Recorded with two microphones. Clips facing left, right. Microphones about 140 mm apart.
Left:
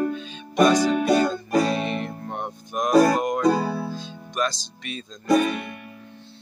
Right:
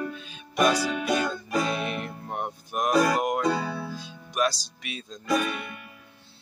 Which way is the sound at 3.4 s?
40° left (ahead or behind).